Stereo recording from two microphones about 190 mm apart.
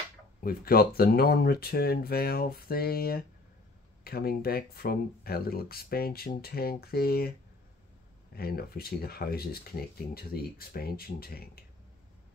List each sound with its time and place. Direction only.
0.4 s speech: 50° left (ahead or behind)
8.4 s speech: 55° left (ahead or behind)